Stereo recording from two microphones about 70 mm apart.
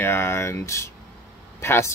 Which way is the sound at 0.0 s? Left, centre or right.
Left.